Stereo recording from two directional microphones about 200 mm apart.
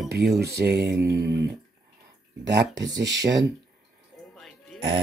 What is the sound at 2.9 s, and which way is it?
Speech, 60° right (ahead or behind).